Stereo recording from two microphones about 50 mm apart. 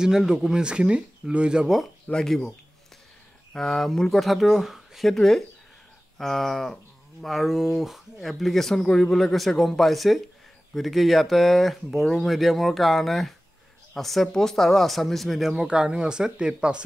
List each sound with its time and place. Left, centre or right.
0.3 s speech: centre
2.1 s speech: centre
3.5 s speech: centre
5.1 s speech: centre
15.5 s speech: centre